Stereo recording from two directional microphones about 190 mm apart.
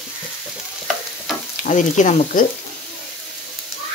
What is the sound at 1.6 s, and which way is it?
Speech, 40° left (ahead or behind).